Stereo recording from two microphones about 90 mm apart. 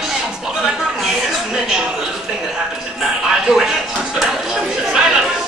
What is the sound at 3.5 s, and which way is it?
Music, 5° right (ahead or behind).